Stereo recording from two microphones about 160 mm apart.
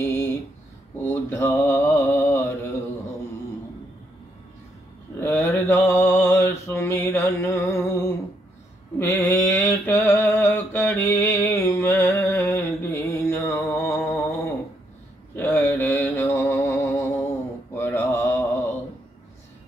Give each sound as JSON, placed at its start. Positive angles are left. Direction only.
{"t": 0.0, "sound": "a sound", "side_deg": 20}
{"t": 1.0, "sound": "mantra", "side_deg": 15}
{"t": 5.2, "sound": "mantra", "side_deg": 15}